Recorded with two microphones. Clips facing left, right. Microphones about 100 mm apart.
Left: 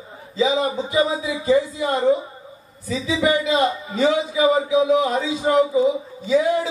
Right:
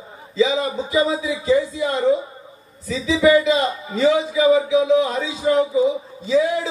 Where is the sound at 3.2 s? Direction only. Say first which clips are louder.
Right 4 dB; 30° left (ahead or behind).